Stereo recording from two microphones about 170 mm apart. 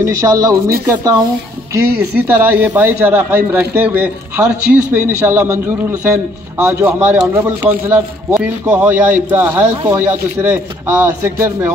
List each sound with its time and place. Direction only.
0.0 s speech: 20° right (ahead or behind)
2.1 s a man's voice: 10° right (ahead or behind)